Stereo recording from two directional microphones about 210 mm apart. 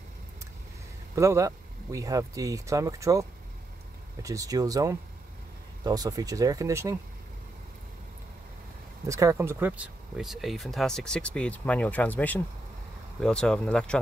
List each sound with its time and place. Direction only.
1.1 s speech: 15° right (ahead or behind)
9.0 s speech: 15° right (ahead or behind); by 13.9 s 5° left (ahead or behind)